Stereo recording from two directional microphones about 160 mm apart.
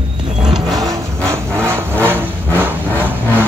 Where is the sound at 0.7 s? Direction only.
20° right (ahead or behind).